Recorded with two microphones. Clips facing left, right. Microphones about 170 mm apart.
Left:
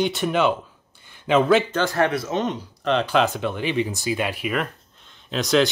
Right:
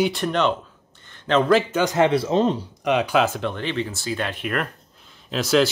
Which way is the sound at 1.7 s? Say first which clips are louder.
Right 3 dB; 20° right (ahead or behind).